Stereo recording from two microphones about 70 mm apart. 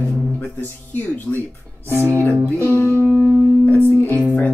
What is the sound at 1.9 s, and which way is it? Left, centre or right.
Speech, right.